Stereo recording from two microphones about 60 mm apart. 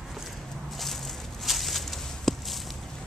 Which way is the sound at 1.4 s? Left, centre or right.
Centre.